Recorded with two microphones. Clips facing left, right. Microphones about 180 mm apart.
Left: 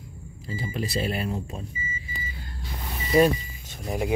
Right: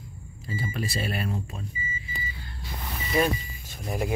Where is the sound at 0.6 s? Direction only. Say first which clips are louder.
Left 2 dB; 20° left (ahead or behind).